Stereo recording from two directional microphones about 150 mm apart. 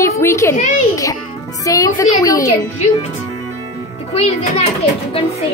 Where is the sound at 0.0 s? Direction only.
20° left (ahead or behind).